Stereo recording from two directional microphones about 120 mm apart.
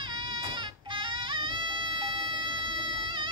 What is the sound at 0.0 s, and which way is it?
Music, 40° right (ahead or behind).